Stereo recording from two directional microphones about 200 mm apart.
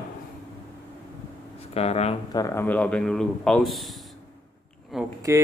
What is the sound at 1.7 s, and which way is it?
Speech, 30° left (ahead or behind).